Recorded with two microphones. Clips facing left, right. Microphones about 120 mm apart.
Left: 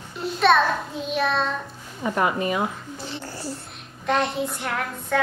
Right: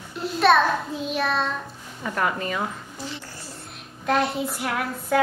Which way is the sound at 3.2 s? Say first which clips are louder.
Left 7 dB; 30° left (ahead or behind).